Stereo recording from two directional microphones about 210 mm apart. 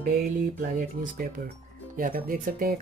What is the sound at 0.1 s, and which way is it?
Speech, 40° right (ahead or behind).